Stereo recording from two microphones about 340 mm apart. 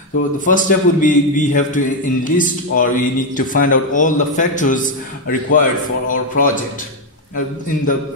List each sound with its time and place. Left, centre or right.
0.5 s speech: left